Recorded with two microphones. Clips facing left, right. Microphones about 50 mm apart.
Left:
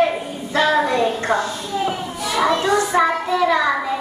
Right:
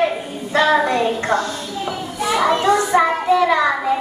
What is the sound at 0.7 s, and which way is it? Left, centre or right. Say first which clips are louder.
Speech: even; right.